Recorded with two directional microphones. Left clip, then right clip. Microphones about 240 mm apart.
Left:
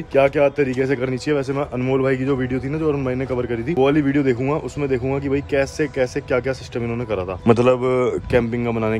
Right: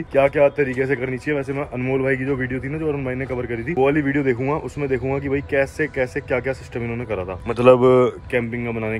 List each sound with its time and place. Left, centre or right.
0.1 s speech: centre
7.6 s speech: centre
8.3 s speech: centre